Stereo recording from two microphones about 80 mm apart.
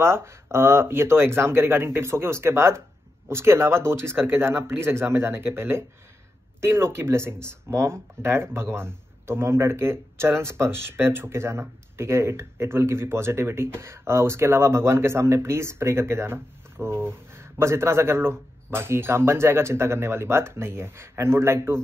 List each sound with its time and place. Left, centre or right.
0.0 s speech: right